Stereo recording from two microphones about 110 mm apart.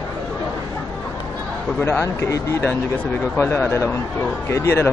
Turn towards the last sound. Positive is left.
turn(degrees=25)  # may be behind; listen again after turning